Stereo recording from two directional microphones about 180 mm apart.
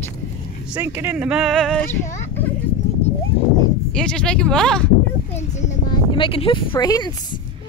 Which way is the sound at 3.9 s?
5° left (ahead or behind).